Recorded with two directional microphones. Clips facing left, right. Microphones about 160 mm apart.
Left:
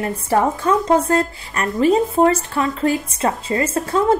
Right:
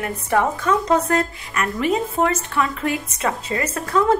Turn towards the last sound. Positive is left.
turn(degrees=30)  # may be behind; listen again after turning